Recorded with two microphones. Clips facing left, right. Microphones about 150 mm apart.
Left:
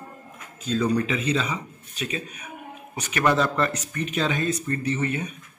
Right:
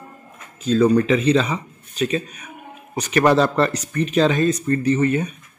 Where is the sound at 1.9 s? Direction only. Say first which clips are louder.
Right 9 dB; 40° right (ahead or behind).